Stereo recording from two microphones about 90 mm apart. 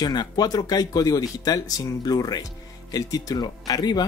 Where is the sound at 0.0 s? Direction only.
50° left (ahead or behind).